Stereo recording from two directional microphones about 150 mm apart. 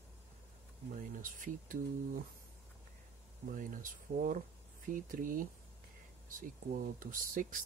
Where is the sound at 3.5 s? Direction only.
60° right (ahead or behind).